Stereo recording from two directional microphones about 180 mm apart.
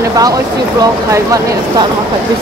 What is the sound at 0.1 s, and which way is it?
Speech, 20° right (ahead or behind).